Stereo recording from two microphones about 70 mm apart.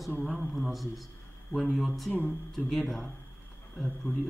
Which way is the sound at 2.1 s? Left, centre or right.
Left.